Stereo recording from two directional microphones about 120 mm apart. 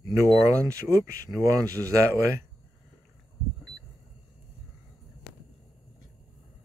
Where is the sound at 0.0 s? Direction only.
25° right (ahead or behind).